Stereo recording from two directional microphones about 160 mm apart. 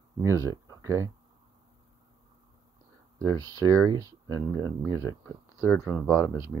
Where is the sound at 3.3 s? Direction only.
25° right (ahead or behind).